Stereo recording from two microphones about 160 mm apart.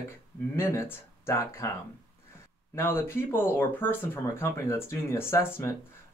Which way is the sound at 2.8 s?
15° left (ahead or behind).